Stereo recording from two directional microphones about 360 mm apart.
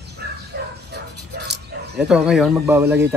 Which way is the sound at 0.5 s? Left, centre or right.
Right.